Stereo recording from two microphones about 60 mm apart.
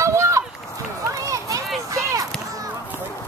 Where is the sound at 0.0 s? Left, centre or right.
Right.